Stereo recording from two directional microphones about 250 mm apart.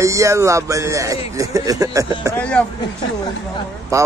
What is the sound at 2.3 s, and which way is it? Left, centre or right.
Speech, centre.